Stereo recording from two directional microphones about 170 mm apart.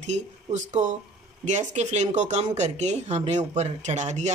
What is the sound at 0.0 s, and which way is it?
A woman's voice, 40° right (ahead or behind).